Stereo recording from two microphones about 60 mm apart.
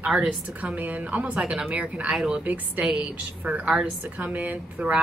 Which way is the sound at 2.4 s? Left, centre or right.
Right.